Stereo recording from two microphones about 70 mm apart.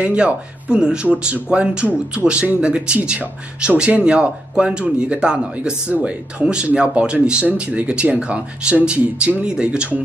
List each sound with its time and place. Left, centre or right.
0.0 s speech: centre